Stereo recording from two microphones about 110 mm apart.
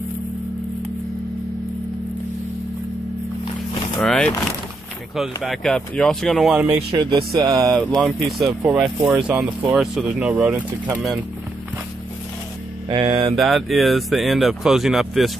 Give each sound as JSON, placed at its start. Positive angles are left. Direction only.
{"t": 4.0, "sound": "vehicle", "side_deg": 5}
{"t": 5.1, "sound": "speech", "side_deg": 0}
{"t": 6.9, "sound": "music", "side_deg": -40}
{"t": 8.0, "sound": "speech", "side_deg": 0}
{"t": 12.8, "sound": "a sound", "side_deg": -50}
{"t": 13.4, "sound": "speech", "side_deg": 0}